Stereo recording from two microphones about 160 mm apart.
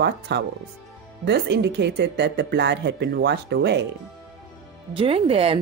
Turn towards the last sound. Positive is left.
turn(degrees=-35)  # may be behind; listen again after turning